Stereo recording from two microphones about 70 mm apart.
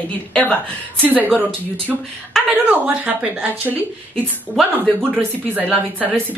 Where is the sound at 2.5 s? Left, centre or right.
Right.